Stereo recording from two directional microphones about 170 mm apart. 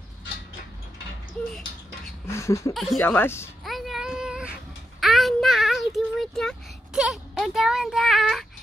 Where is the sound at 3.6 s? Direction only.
Centre (ahead or behind).